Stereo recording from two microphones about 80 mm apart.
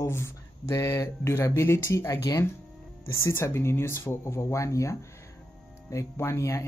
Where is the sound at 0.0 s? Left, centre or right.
Left.